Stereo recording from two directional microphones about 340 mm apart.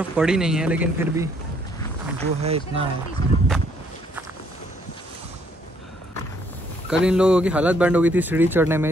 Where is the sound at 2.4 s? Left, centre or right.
Centre.